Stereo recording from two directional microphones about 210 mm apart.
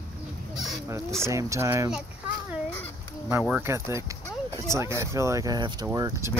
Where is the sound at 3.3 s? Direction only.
5° right (ahead or behind).